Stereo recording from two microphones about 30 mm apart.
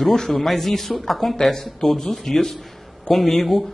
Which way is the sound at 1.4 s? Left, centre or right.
Centre.